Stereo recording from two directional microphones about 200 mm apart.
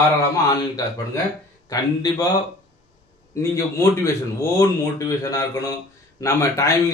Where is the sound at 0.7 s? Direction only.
15° left (ahead or behind).